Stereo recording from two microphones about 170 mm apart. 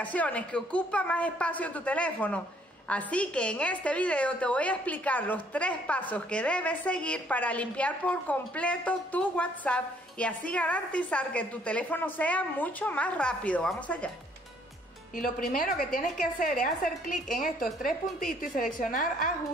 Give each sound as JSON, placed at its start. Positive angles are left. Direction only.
{"t": 0.0, "sound": "a woman's voice", "side_deg": 10}
{"t": 15.1, "sound": "a woman's voice", "side_deg": 55}